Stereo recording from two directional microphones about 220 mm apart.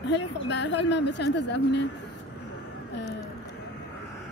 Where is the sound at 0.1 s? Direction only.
55° left (ahead or behind).